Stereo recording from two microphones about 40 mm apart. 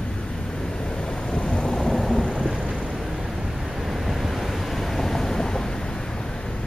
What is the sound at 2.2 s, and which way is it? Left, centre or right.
Thunder, centre.